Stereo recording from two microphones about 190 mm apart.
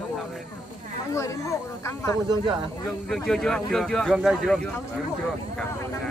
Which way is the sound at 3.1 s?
5° left (ahead or behind).